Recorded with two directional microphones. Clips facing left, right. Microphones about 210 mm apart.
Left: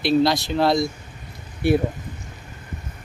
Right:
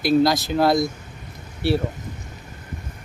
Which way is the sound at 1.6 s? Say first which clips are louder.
Left 3 dB; 15° left (ahead or behind).